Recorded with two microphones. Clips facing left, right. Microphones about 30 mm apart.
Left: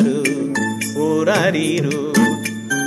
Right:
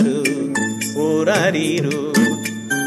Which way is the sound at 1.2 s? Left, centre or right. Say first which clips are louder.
Even; centre.